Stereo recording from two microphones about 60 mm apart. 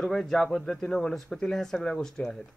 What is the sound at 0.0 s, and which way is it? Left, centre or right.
Speech, centre.